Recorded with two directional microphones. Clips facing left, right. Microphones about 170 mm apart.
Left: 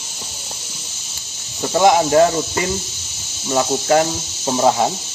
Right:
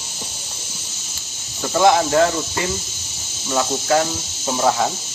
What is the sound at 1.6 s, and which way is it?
Speech, 15° left (ahead or behind).